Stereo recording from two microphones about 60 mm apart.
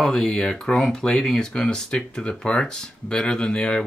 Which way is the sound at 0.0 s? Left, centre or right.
Centre.